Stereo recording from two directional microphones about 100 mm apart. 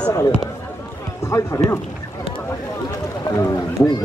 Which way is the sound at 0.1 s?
35° left (ahead or behind).